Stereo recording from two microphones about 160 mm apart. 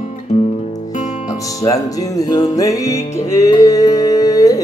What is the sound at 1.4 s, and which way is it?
Music, 20° left (ahead or behind).